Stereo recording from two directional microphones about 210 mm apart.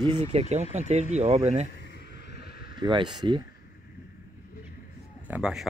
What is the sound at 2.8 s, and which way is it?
Speech, 20° right (ahead or behind).